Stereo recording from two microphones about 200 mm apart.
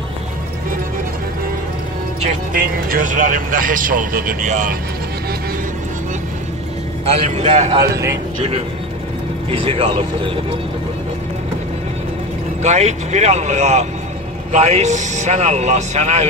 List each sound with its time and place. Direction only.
2.2 s speech: 45° right (ahead or behind)
7.1 s a man's voice: 30° right (ahead or behind)
9.5 s speech: 30° right (ahead or behind)
12.6 s a man's voice: 35° right (ahead or behind)